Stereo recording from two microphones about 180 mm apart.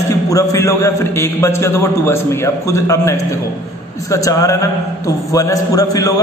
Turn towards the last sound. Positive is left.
turn(degrees=20)  # may be behind; listen again after turning